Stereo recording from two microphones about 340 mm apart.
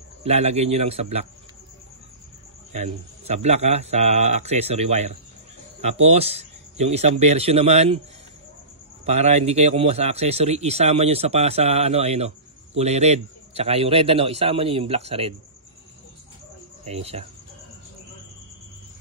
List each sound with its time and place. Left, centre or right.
0.2 s speech: centre
2.7 s speech: centre
9.0 s speech: centre
16.8 s speech: centre